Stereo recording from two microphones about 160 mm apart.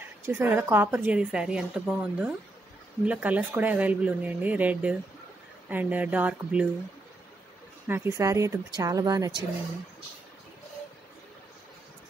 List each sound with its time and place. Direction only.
0.2 s a woman's voice: 15° right (ahead or behind)
7.9 s speech: 15° right (ahead or behind)